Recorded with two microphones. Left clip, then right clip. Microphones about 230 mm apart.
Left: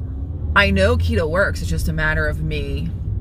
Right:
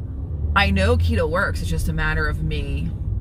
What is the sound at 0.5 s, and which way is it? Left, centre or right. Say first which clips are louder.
Speech: left 4 dB; centre.